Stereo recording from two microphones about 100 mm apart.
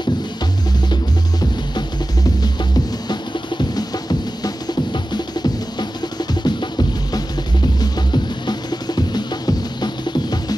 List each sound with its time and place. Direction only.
3.1 s music: 50° left (ahead or behind)